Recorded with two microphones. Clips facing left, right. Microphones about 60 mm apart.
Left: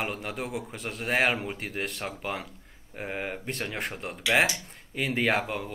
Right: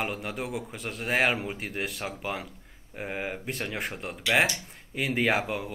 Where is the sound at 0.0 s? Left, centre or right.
Centre.